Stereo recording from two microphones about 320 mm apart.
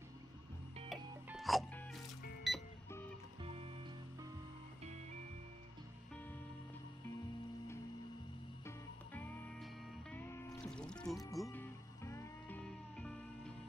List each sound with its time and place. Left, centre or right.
0.8 s music: centre
3.4 s music: centre
8.6 s music: centre